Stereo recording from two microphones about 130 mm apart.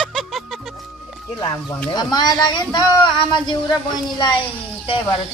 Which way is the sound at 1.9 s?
30° left (ahead or behind).